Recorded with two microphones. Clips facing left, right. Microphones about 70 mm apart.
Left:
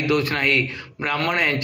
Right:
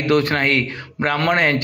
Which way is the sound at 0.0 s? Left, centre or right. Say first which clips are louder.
Right 4 dB; right.